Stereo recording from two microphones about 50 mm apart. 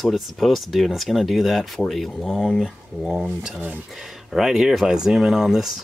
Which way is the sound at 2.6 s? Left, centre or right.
Centre.